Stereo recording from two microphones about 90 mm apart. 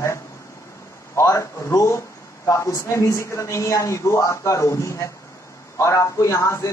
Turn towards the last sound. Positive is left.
turn(degrees=35)  # may be behind; listen again after turning